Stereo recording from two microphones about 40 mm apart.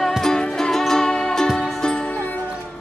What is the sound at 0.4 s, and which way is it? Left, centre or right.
Music, centre.